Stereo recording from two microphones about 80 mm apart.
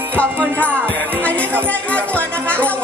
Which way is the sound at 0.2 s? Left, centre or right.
Centre.